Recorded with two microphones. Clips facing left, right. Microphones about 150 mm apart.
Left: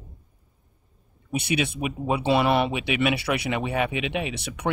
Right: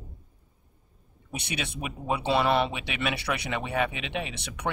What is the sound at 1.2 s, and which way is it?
Speech, 5° left (ahead or behind).